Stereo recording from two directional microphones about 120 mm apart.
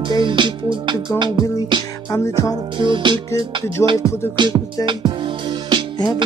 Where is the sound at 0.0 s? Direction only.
40° right (ahead or behind).